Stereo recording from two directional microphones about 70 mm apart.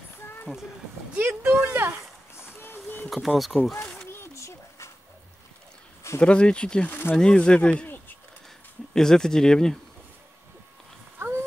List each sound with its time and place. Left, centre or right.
0.5 s speech: centre
1.1 s speech: right
2.3 s a sound: left
3.1 s speech: centre
3.8 s a sound: left
6.2 s speech: centre
6.9 s speech: left
7.2 s speech: centre
8.9 s speech: centre
11.1 s a sound: right